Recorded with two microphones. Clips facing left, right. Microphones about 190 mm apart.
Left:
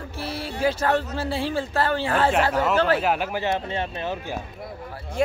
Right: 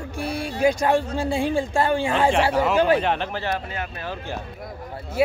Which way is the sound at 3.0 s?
5° left (ahead or behind).